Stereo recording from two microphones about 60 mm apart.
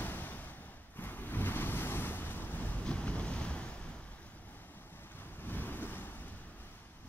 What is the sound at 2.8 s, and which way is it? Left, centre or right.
Waves, left.